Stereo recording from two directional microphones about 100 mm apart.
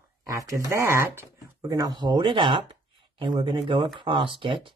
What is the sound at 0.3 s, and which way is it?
Speech, 35° right (ahead or behind).